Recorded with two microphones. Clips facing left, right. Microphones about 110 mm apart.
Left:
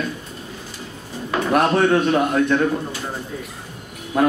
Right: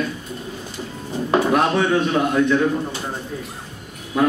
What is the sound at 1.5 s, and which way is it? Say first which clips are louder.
A man's voice: left 6 dB; 50° left (ahead or behind).